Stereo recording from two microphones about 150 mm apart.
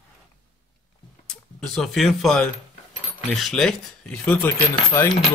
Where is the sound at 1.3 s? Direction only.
5° left (ahead or behind).